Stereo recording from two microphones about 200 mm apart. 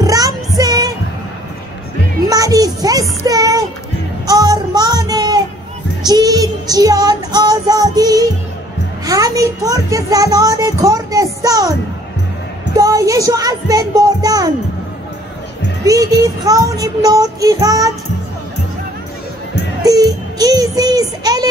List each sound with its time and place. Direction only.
0.0 s music: 20° right (ahead or behind)
2.2 s music: 20° right (ahead or behind)
12.7 s music: 15° right (ahead or behind)
15.8 s child singing: 15° right (ahead or behind)
19.8 s music: 20° right (ahead or behind)